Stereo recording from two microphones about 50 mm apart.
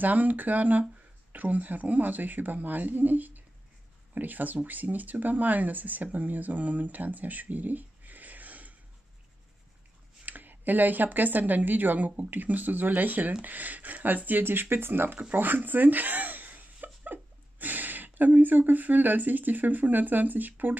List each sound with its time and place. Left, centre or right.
0.0 s speech: right
10.2 s speech: right